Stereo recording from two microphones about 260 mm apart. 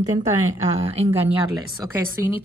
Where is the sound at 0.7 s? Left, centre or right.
Right.